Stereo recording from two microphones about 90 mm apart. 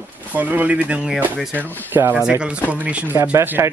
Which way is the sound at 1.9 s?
20° right (ahead or behind).